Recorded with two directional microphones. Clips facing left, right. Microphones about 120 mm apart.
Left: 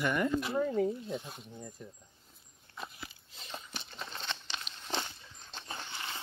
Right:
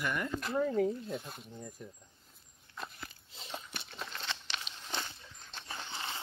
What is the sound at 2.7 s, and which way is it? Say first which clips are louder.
Biting: even; 5° left (ahead or behind).